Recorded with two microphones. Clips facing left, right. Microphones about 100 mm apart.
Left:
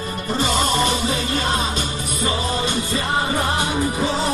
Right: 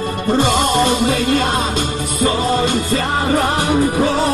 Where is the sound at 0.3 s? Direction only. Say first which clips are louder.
Right 5 dB; 50° right (ahead or behind).